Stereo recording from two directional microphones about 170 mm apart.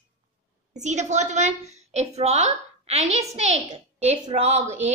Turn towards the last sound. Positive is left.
turn(degrees=-40)  # may be behind; listen again after turning